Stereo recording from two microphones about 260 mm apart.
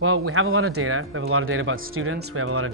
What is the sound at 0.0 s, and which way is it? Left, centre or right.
Speech, right.